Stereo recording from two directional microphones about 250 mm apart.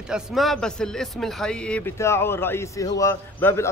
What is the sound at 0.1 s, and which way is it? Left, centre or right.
A man's voice, centre.